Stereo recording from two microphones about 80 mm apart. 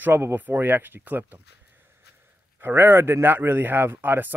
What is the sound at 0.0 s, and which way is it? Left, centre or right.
Speech, right.